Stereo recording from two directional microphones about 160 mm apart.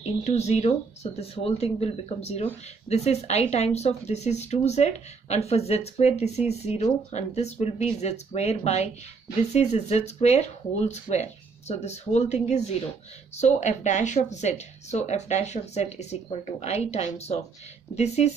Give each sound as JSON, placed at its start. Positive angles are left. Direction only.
{"t": 0.0, "sound": "speech", "side_deg": 45}